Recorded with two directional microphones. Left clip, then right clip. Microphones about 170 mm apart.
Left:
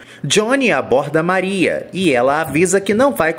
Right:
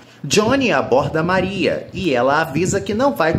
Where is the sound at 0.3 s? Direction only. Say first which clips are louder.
Left 1 dB; 35° left (ahead or behind).